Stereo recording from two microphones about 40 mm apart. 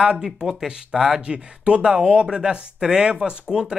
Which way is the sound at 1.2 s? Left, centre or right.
Right.